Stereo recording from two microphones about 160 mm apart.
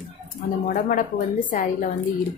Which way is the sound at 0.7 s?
55° left (ahead or behind).